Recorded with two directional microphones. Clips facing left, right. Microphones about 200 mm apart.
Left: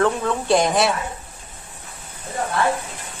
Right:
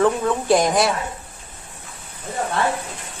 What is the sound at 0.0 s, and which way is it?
Speech, centre (ahead or behind).